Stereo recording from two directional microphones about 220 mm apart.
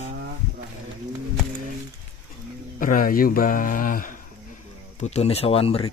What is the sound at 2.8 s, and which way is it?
Speech, 40° left (ahead or behind).